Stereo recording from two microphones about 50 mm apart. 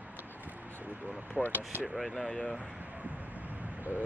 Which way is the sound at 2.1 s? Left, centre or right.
Centre.